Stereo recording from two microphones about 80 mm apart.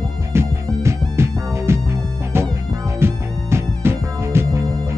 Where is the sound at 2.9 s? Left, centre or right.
Right.